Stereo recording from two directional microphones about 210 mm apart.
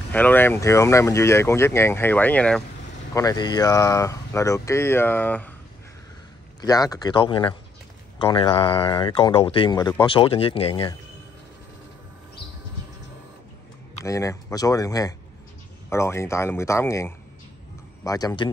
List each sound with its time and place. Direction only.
0.1 s speech: 10° left (ahead or behind)
3.2 s speech: 20° left (ahead or behind)
6.6 s speech: 15° left (ahead or behind)
14.0 s speech: 15° left (ahead or behind)